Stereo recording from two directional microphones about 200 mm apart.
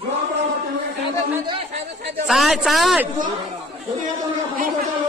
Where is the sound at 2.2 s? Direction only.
Centre (ahead or behind).